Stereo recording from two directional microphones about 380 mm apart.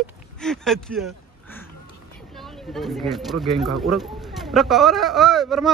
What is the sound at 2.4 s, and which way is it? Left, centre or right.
Speech, centre.